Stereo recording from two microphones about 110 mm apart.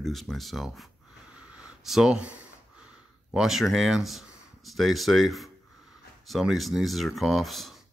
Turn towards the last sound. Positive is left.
turn(degrees=0)  # may be behind; listen again after turning